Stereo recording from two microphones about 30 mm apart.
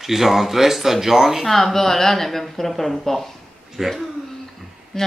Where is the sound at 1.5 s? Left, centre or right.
Centre.